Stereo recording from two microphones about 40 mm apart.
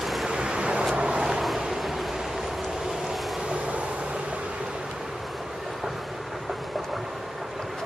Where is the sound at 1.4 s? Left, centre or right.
Centre.